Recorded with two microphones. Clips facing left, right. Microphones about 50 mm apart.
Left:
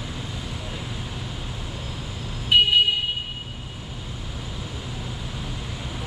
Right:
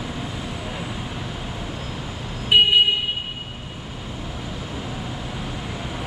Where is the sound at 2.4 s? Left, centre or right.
Centre.